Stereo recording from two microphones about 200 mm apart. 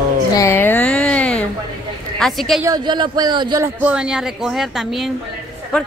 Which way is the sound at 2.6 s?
20° right (ahead or behind).